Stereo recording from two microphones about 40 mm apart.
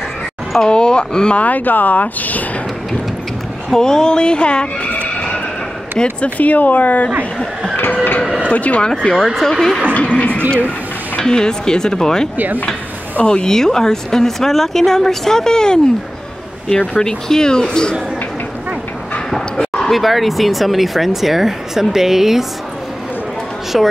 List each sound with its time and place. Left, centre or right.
0.7 s speech: left
1.4 s speech: left
3.7 s speech: centre
6.0 s speech: left
7.7 s a sound: left
8.5 s speech: left
9.0 s speech: centre
9.9 s a sound: left
11.1 s speech: centre
19.3 s bow-wow: centre
19.9 s speech: centre
23.7 s speech: centre